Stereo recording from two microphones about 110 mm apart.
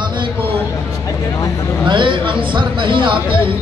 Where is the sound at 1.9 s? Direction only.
50° right (ahead or behind).